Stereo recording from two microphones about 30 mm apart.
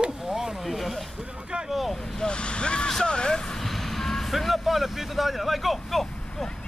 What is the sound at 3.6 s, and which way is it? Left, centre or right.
Vehicle, centre.